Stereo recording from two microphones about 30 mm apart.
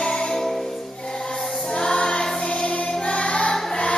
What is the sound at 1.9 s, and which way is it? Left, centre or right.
Choir, left.